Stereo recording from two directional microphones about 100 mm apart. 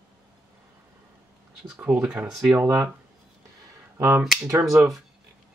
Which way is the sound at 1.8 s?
10° right (ahead or behind).